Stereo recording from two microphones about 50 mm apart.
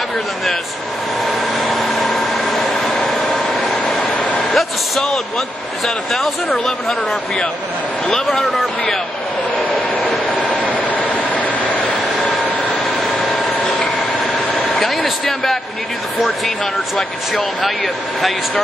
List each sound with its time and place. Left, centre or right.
1.2 s vehicle: centre
4.2 s vehicle: left
4.5 s a sound: centre
6.6 s speech: centre
10.6 s vehicle: left
13.0 s vehicle: centre
14.7 s speech: centre